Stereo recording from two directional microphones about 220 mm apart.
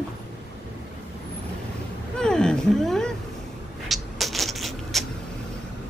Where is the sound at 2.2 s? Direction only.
5° left (ahead or behind).